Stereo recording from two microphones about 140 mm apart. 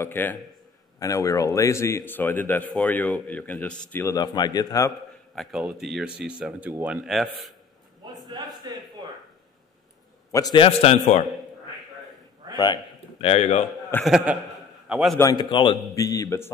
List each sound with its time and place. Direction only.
0.0 s a man's voice: 15° left (ahead or behind)
3.9 s a man's voice: 20° left (ahead or behind)
5.3 s speech: centre (ahead or behind)
8.7 s speech: 30° right (ahead or behind)
10.3 s a man's voice: 25° left (ahead or behind)
10.6 s a man's voice: 45° left (ahead or behind)
12.5 s a sound: 30° left (ahead or behind)
13.3 s a man's voice: 50° left (ahead or behind)
14.0 s a man's voice: 5° right (ahead or behind)
15.3 s a man's voice: 35° left (ahead or behind)
15.9 s a man's voice: 25° left (ahead or behind)